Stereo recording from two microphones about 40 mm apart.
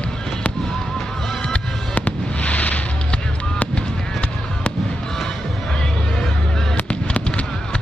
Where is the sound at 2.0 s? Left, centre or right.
Left.